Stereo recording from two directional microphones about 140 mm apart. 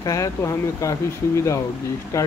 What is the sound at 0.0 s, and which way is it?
Speech, 25° left (ahead or behind).